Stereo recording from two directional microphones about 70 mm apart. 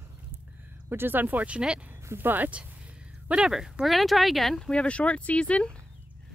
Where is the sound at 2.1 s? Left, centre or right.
Right.